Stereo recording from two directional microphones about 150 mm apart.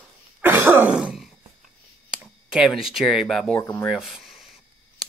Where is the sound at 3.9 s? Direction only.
5° right (ahead or behind).